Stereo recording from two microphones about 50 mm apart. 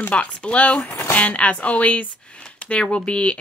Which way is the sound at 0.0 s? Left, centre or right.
Left.